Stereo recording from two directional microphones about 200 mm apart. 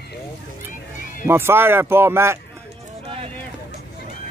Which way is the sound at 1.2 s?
10° right (ahead or behind).